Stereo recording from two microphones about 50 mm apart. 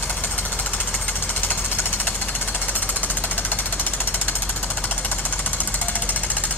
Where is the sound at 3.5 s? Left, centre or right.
Left.